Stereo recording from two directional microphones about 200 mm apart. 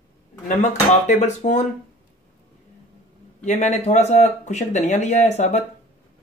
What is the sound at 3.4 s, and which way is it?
Speech, 35° left (ahead or behind).